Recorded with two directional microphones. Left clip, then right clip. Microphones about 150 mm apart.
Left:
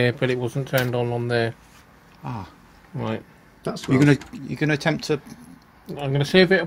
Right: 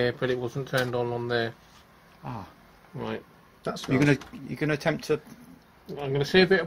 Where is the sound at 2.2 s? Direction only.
10° left (ahead or behind).